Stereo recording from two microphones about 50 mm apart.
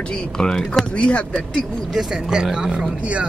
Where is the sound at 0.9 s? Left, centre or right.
Left.